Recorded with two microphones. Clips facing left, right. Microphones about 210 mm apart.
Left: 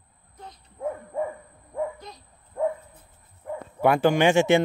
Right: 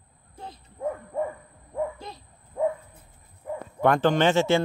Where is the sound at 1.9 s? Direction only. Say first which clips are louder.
Right 2 dB; 30° right (ahead or behind).